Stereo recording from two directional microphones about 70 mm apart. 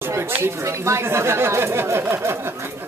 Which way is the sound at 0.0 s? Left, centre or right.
Right.